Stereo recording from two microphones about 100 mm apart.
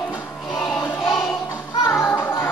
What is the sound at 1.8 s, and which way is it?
Music, 30° left (ahead or behind).